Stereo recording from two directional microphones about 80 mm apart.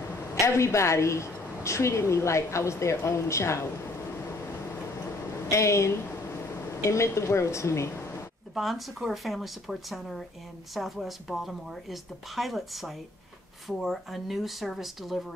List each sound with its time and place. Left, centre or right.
0.3 s a woman's voice: left
5.5 s a woman's voice: left
8.5 s a woman's voice: centre